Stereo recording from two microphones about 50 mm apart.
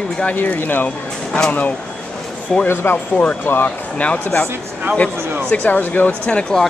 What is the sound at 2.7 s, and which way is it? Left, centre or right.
Speech, left.